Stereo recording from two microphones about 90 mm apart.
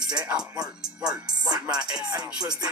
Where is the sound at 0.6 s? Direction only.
10° right (ahead or behind).